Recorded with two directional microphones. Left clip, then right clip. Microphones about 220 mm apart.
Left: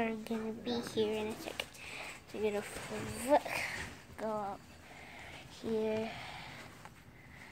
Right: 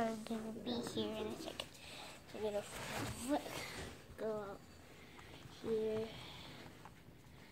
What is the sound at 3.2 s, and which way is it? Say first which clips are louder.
Speech: left 12 dB; 20° left (ahead or behind).